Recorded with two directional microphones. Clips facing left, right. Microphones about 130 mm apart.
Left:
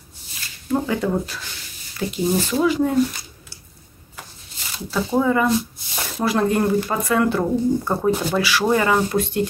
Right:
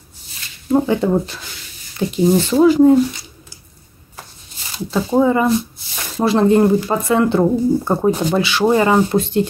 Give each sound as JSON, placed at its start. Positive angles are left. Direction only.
{"t": 0.7, "sound": "speech", "side_deg": -25}
{"t": 2.6, "sound": "speech", "side_deg": -35}
{"t": 4.7, "sound": "speech", "side_deg": -25}